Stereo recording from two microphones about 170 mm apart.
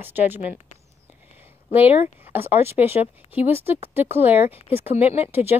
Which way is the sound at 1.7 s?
10° right (ahead or behind).